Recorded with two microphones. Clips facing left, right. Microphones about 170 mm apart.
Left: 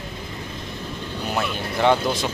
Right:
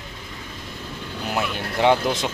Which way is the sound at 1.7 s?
15° right (ahead or behind).